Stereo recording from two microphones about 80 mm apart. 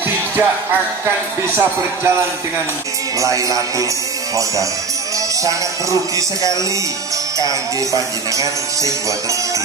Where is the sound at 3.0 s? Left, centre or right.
Right.